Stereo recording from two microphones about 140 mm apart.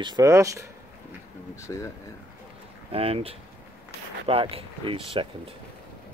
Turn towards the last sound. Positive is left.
turn(degrees=-40)  # may be behind; listen again after turning